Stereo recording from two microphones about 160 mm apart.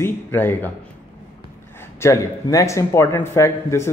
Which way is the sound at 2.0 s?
20° left (ahead or behind).